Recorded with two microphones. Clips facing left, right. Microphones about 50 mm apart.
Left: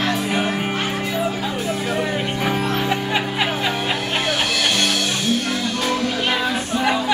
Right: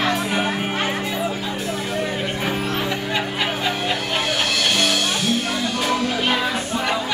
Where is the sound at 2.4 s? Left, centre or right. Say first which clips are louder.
Left 4 dB; centre.